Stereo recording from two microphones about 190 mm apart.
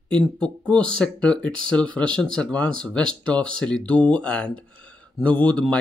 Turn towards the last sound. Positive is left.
turn(degrees=5)  # may be behind; listen again after turning